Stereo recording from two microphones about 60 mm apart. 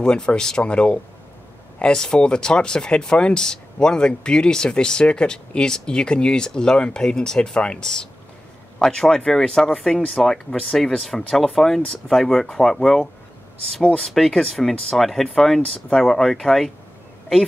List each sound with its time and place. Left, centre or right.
0.0 s speech: centre